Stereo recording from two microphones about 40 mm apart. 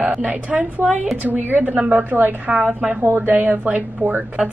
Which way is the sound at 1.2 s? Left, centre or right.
Right.